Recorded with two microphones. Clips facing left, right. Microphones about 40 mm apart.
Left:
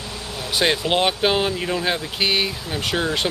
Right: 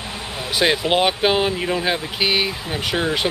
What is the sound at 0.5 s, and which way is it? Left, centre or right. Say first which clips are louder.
Speech: right 2 dB; centre.